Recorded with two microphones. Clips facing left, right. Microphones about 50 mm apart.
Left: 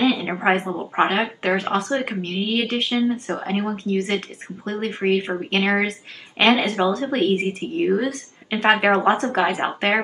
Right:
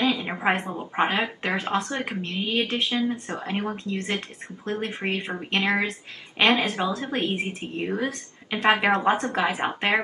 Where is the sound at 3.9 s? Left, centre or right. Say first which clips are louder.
Left 6 dB; left.